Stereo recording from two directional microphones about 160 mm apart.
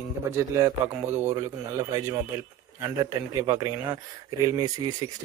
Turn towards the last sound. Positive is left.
turn(degrees=-25)  # may be behind; listen again after turning